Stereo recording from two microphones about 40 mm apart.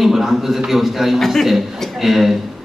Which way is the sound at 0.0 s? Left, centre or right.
Centre.